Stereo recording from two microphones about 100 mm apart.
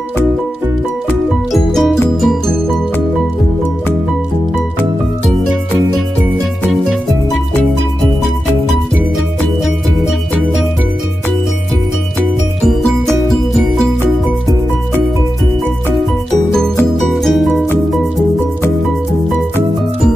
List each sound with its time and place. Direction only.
1.5 s music: centre (ahead or behind)
12.6 s music: 5° left (ahead or behind)
17.0 s music: centre (ahead or behind)